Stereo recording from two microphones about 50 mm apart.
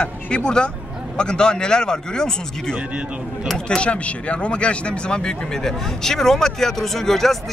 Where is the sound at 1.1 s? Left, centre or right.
Centre.